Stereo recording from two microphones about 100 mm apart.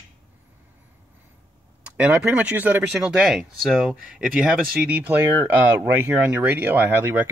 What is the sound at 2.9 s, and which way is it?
Speech, 5° right (ahead or behind).